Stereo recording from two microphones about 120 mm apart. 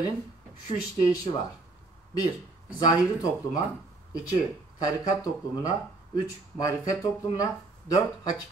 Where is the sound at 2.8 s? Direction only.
30° left (ahead or behind).